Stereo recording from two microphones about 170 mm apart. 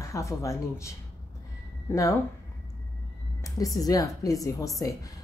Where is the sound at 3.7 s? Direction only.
20° left (ahead or behind).